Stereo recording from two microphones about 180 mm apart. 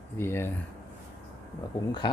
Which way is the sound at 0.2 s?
15° left (ahead or behind).